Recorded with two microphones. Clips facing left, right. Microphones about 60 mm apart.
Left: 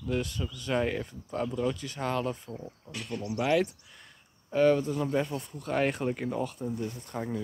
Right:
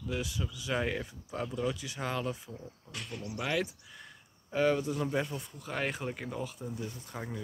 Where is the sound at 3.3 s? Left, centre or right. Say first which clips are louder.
Left 7 dB; centre.